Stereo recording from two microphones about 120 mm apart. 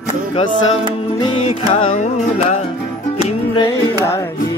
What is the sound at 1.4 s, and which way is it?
Music, 50° left (ahead or behind).